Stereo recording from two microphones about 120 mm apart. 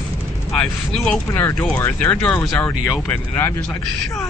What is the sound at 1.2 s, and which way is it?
Speech, 20° left (ahead or behind).